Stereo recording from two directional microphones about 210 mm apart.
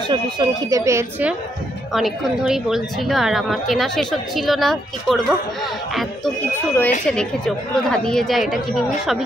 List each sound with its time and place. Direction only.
0.1 s speech: 20° right (ahead or behind)
2.0 s speech: centre (ahead or behind)